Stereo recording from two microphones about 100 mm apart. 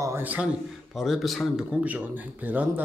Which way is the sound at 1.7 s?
15° right (ahead or behind).